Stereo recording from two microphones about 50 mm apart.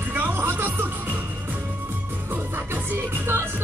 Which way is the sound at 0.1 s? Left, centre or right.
Right.